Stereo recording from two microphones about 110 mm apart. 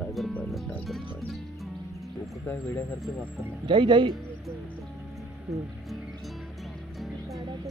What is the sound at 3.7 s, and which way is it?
Speech, 45° right (ahead or behind).